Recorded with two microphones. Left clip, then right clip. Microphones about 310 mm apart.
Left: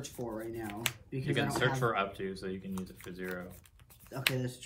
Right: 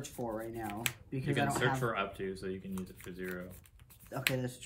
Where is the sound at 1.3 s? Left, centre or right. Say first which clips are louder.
Even; centre.